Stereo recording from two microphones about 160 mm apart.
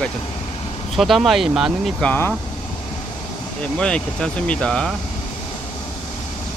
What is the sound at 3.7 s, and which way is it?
Speech, 5° left (ahead or behind).